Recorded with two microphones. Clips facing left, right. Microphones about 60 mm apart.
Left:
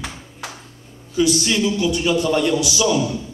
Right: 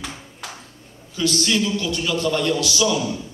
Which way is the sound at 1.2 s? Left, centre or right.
Centre.